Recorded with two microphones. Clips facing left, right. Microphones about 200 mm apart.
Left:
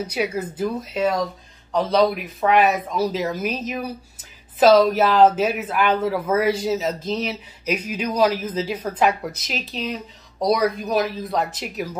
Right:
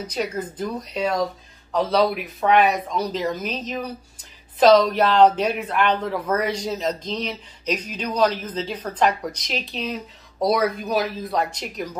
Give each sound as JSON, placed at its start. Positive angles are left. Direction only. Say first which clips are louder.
{"t": 0.0, "sound": "speech", "louder": "left 2 dB", "side_deg": 10}